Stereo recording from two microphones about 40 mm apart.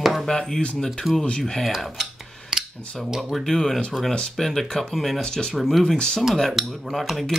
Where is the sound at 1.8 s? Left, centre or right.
Centre.